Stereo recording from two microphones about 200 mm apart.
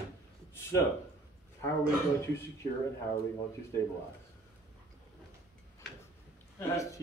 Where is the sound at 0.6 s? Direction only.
15° left (ahead or behind).